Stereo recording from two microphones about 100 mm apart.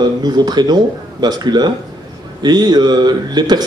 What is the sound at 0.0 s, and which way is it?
Speech, 45° right (ahead or behind).